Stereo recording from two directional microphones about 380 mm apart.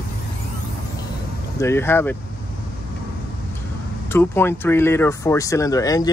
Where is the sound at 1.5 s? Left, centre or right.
Centre.